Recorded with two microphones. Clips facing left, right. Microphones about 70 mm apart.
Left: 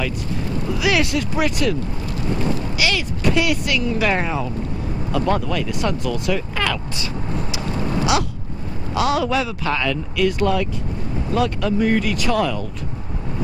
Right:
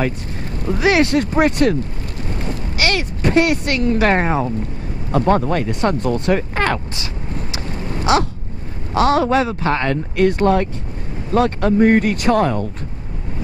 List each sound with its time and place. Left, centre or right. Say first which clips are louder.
0.7 s speech: right 5 dB; right
8.0 s a sound: right 5 dB; right
8.9 s speech: right 5 dB; right